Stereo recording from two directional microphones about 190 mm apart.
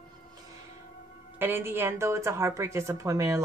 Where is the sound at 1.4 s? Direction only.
10° right (ahead or behind).